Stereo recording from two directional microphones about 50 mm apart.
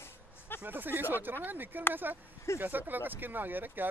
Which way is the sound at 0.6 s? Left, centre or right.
Right.